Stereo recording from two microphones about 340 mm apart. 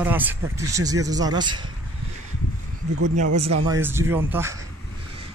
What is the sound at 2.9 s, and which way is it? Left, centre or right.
Speech, right.